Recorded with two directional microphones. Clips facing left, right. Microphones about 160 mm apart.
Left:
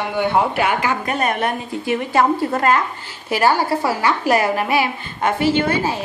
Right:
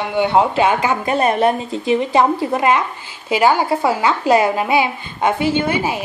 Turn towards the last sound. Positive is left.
turn(degrees=-15)  # may be behind; listen again after turning